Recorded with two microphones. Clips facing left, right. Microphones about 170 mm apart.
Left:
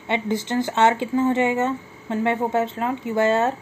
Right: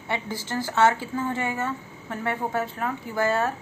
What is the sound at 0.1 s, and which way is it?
Speech, 20° left (ahead or behind).